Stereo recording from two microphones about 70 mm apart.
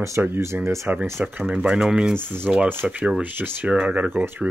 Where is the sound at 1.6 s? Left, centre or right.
Centre.